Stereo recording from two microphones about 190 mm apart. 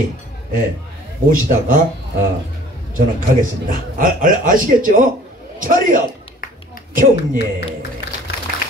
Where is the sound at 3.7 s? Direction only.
45° right (ahead or behind).